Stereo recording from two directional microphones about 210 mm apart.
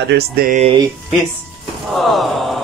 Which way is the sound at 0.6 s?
25° right (ahead or behind).